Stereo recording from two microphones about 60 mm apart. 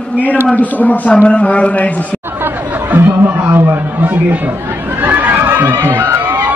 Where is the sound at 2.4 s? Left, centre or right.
Right.